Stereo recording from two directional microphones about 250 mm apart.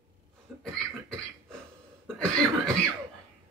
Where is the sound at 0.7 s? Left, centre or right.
Centre.